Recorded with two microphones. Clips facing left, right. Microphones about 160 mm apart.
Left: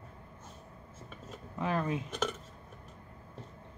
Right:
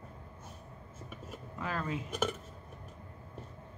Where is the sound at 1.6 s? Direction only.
20° left (ahead or behind).